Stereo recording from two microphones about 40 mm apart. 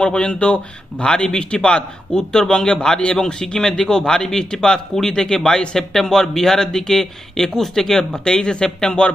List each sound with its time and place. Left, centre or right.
0.0 s speech: left